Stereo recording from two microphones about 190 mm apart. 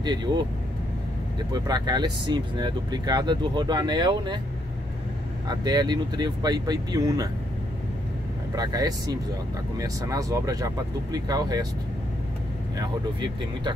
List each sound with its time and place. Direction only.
0.0 s speech: 25° right (ahead or behind)
1.5 s speech: 20° right (ahead or behind)
5.5 s speech: 20° right (ahead or behind)
8.5 s speech: 20° right (ahead or behind)
12.7 s speech: 20° right (ahead or behind)